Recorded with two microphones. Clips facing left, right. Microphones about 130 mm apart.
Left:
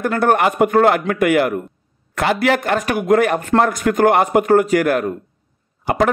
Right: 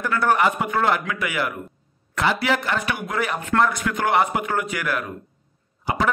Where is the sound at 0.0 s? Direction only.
50° left (ahead or behind).